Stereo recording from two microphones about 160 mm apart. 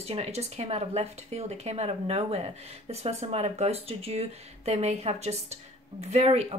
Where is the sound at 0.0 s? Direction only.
40° right (ahead or behind).